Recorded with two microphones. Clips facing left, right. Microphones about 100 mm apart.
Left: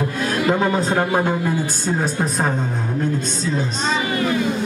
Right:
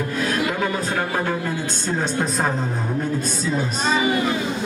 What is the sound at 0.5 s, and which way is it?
Speech, 30° left (ahead or behind).